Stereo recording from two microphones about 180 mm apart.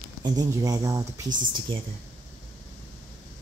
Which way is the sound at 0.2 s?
20° right (ahead or behind).